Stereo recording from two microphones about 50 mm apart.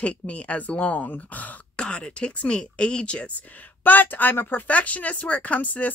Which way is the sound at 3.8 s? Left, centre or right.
Left.